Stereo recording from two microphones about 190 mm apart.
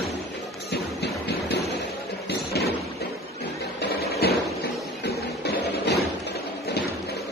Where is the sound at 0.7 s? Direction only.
60° left (ahead or behind).